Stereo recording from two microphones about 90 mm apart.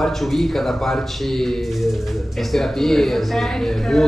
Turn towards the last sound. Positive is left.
turn(degrees=5)  # may be behind; listen again after turning